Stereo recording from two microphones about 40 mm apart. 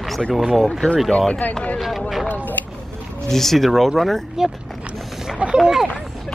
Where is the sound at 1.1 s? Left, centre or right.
Centre.